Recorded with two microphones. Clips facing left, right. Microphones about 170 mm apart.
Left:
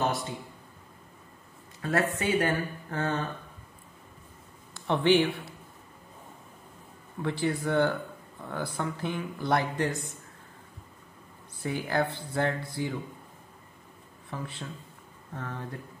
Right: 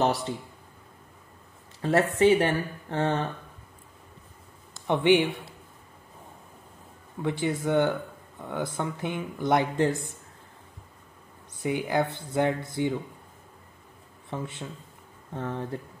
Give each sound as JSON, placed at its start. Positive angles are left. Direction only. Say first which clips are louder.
{"t": 1.8, "sound": "speech", "louder": "right 6 dB", "side_deg": -30}
{"t": 4.8, "sound": "speech", "louder": "right 2 dB", "side_deg": -15}
{"t": 7.2, "sound": "speech", "louder": "right 1 dB", "side_deg": -20}
{"t": 11.6, "sound": "speech", "louder": "right 3 dB", "side_deg": -20}
{"t": 14.3, "sound": "speech", "louder": "right 3 dB", "side_deg": -20}